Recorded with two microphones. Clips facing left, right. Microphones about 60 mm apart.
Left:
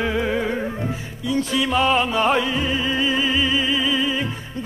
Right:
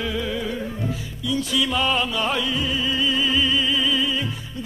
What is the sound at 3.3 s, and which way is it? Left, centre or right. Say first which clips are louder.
Music: left 1 dB; centre.